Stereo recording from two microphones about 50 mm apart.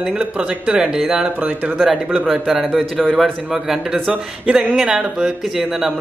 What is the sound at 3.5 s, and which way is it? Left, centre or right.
Speech, centre.